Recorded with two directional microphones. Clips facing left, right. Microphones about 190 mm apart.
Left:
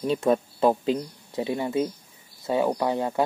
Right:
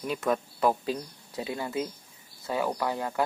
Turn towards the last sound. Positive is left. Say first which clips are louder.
# left 5 dB
turn(degrees=25)  # may be behind; listen again after turning